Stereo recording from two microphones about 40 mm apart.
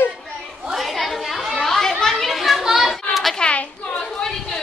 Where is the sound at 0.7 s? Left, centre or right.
Centre.